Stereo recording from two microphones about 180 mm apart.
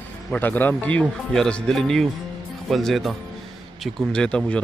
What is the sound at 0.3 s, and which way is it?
A man's voice, 10° left (ahead or behind).